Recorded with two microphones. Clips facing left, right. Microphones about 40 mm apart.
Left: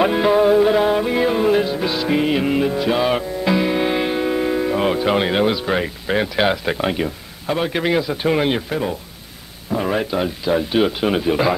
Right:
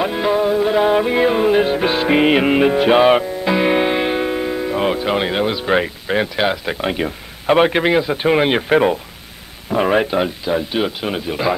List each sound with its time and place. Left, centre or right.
0.0 s music: centre
0.8 s music: centre
1.6 s music: right
3.5 s music: centre
4.4 s speech: centre
7.4 s a man's voice: right
7.7 s speech: right
8.5 s music: right
9.8 s speech: right
10.4 s speech: centre